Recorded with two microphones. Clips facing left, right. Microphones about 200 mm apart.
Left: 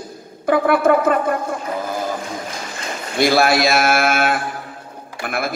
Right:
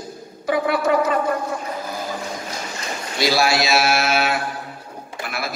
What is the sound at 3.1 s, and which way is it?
A man's voice, 55° left (ahead or behind).